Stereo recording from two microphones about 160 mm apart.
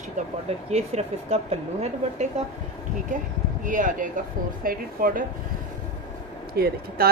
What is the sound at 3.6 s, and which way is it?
Speech, 55° right (ahead or behind).